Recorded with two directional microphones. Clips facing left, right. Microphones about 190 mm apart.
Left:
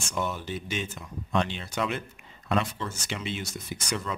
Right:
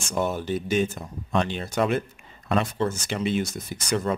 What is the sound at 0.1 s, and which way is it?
Speech, 45° right (ahead or behind).